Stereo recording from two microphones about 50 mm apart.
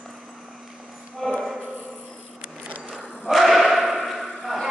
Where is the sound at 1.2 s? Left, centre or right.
Centre.